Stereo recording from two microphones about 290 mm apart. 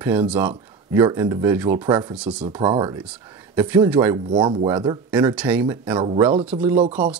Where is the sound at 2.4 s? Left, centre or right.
Centre.